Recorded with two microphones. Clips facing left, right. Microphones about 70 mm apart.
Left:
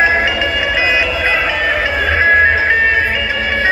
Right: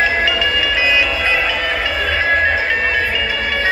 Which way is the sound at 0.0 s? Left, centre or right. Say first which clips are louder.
Left 3 dB; left.